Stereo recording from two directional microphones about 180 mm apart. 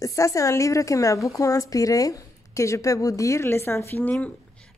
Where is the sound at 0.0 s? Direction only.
15° left (ahead or behind).